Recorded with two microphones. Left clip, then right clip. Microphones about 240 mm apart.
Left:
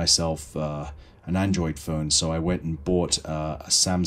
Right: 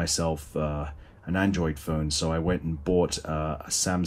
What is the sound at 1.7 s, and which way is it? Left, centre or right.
Speech, left.